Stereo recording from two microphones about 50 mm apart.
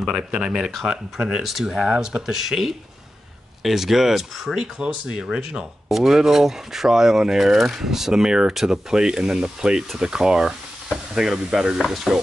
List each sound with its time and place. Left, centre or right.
0.0 s speech: centre
4.7 s speech: centre